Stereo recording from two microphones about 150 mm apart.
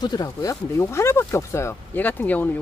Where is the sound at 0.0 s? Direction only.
25° left (ahead or behind).